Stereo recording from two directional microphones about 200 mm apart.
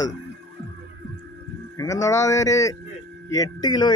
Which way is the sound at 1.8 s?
15° left (ahead or behind).